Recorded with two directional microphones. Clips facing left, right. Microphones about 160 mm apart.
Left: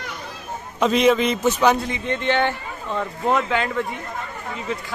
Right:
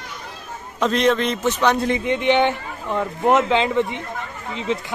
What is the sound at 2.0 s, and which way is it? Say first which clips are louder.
A man's voice: right 2 dB; 15° right (ahead or behind).